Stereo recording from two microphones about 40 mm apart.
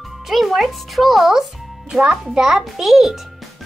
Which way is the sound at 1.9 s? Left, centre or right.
Centre.